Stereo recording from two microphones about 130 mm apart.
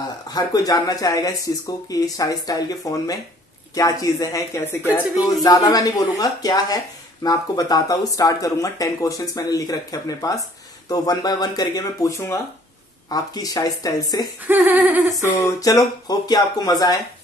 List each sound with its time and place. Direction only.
0.3 s speech: 30° left (ahead or behind)
5.1 s speech: 30° left (ahead or behind)
13.1 s speech: 30° left (ahead or behind)
14.5 s a sound: 15° right (ahead or behind)
15.1 s speech: 20° left (ahead or behind)